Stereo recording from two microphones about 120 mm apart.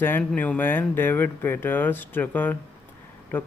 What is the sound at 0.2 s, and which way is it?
Speech, 10° left (ahead or behind).